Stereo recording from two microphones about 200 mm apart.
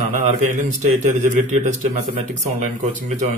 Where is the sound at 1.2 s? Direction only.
40° right (ahead or behind).